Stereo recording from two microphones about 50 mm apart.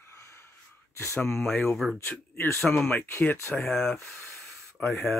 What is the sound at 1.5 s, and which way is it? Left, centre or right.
Speech, centre.